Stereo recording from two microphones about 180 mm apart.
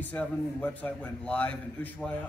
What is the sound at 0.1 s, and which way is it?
A man's voice, 10° left (ahead or behind).